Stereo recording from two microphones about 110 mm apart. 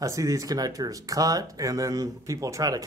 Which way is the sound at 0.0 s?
30° right (ahead or behind).